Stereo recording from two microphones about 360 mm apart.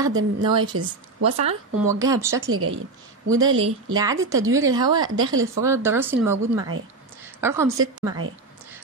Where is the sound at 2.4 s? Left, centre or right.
Right.